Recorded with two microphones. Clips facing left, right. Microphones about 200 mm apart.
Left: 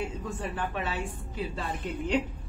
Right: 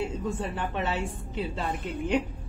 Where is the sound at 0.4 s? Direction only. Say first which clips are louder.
Right 2 dB; 25° right (ahead or behind).